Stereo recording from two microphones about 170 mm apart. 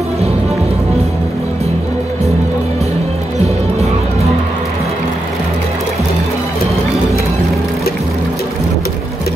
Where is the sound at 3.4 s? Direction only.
40° right (ahead or behind).